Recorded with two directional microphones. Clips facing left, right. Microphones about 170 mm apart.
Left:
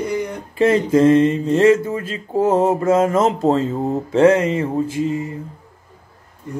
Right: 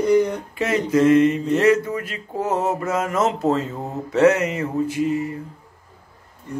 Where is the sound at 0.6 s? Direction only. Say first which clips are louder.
Left 5 dB; 30° left (ahead or behind).